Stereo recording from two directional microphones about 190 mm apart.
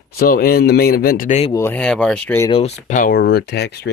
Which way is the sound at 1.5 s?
10° left (ahead or behind).